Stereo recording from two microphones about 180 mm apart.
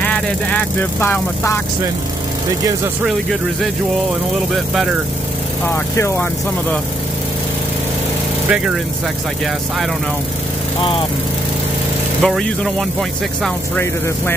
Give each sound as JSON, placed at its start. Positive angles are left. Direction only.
{"t": 0.0, "sound": "speech", "side_deg": 5}
{"t": 5.7, "sound": "speech", "side_deg": 15}
{"t": 8.5, "sound": "speech", "side_deg": -5}
{"t": 10.8, "sound": "speech", "side_deg": 30}
{"t": 12.2, "sound": "speech", "side_deg": 5}